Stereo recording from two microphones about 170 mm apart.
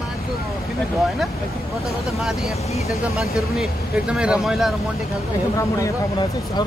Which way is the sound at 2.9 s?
Centre (ahead or behind).